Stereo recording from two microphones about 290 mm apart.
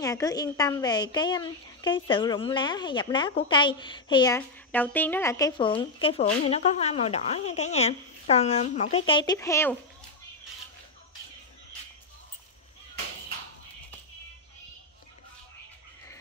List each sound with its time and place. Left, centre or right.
0.0 s a woman's voice: centre